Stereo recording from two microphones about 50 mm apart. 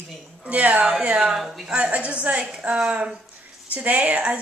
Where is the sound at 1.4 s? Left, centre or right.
Centre.